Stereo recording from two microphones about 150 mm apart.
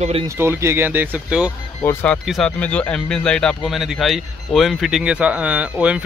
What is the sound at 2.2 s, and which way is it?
Speech, centre (ahead or behind).